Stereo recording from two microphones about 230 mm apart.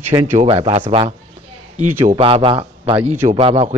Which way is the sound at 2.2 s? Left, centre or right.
Right.